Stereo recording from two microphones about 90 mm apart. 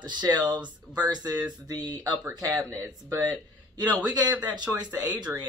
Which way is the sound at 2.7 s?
25° right (ahead or behind).